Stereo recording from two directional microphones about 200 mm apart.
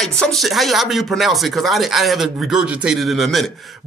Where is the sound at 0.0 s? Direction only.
Centre (ahead or behind).